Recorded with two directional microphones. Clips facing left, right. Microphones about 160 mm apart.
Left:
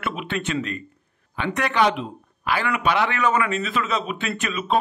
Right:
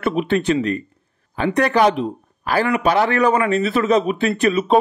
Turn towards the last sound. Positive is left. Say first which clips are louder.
# right 10 dB
turn(degrees=-35)  # may be behind; listen again after turning